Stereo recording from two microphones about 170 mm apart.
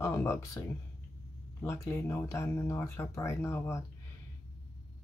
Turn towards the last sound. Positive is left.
turn(degrees=15)  # may be behind; listen again after turning